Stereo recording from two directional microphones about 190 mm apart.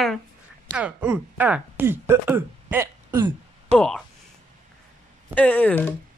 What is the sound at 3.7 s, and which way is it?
Speech, 35° right (ahead or behind).